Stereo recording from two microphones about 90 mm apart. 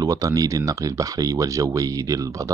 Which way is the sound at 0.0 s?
40° right (ahead or behind).